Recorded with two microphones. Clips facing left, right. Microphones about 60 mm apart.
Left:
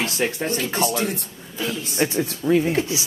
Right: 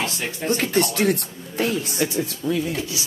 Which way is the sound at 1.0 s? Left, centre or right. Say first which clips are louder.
Right 5 dB; right.